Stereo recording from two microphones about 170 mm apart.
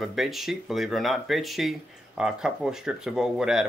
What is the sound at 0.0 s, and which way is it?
Speech, centre (ahead or behind).